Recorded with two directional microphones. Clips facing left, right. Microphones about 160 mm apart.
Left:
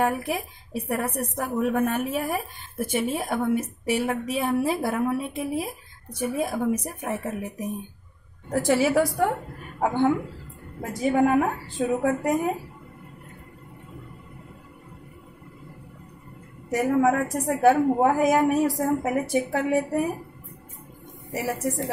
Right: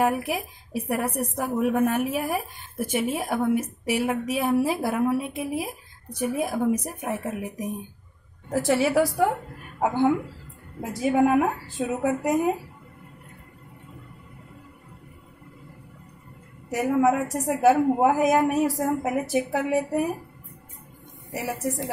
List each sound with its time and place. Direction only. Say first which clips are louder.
0.0 s a woman's voice: right 1 dB; 10° right (ahead or behind)
8.5 s a woman's voice: left 1 dB; centre (ahead or behind)
16.7 s a woman's voice: even; 10° right (ahead or behind)
21.3 s a woman's voice: left 1 dB; centre (ahead or behind)